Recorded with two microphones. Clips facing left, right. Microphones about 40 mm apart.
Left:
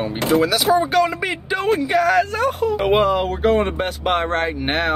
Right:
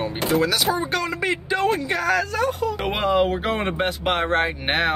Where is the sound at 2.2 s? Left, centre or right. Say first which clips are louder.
Left 4 dB; left.